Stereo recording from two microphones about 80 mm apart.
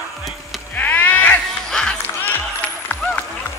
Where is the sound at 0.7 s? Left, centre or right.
Centre.